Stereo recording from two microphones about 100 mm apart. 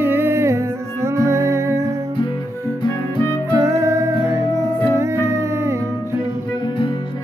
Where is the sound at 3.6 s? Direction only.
30° right (ahead or behind).